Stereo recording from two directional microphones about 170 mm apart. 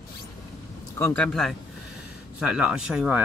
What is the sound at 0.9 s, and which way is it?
Speech, 10° left (ahead or behind).